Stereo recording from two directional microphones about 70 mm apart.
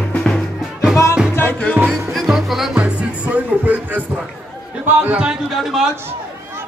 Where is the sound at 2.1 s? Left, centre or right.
Centre.